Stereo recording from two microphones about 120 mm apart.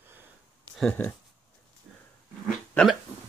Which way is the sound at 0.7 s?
5° left (ahead or behind).